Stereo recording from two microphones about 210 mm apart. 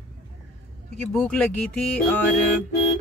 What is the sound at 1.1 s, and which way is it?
Speech, 5° left (ahead or behind).